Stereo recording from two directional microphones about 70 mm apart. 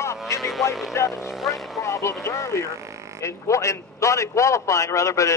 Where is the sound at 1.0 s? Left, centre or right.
Left.